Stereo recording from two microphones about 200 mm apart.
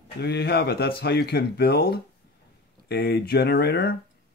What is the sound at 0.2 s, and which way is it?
Speech, 55° left (ahead or behind).